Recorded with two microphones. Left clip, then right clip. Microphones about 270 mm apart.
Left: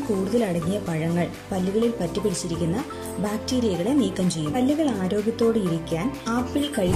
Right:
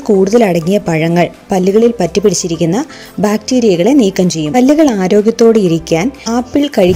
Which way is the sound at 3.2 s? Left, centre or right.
Right.